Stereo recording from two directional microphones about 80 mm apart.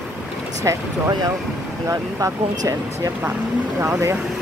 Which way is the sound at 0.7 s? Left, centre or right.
Right.